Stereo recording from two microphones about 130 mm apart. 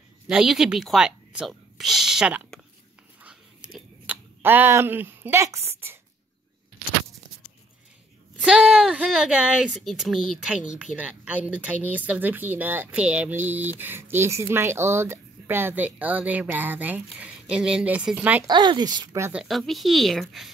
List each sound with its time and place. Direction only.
0.3 s speech: 5° right (ahead or behind)
3.7 s speech: 10° right (ahead or behind)
8.4 s speech: 10° right (ahead or behind)
18.5 s speech: 35° right (ahead or behind)
19.3 s speech: centre (ahead or behind)